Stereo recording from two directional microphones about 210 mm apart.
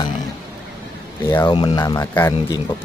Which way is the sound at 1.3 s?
20° left (ahead or behind).